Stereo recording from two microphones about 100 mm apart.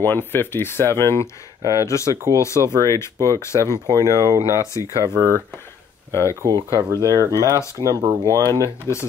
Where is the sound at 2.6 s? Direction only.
35° right (ahead or behind).